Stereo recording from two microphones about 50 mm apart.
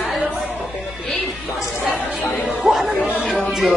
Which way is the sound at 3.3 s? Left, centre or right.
Centre.